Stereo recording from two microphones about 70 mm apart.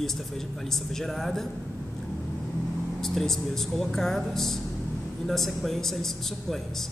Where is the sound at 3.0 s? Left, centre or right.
Centre.